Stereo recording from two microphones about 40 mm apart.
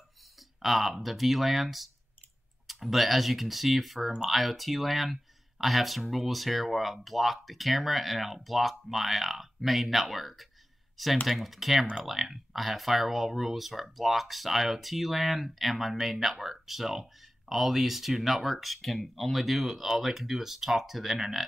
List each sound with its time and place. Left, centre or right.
0.4 s speech: centre